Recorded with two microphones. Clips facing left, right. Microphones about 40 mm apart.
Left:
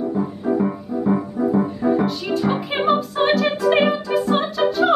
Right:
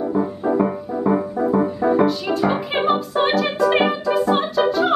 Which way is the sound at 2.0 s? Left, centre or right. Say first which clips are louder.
Right 2 dB; centre.